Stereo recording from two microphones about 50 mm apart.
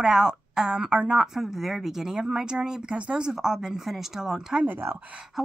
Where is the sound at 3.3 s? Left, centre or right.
Centre.